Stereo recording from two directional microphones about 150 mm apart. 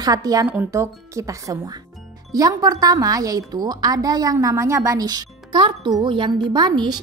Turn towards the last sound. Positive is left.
turn(degrees=-30)  # may be behind; listen again after turning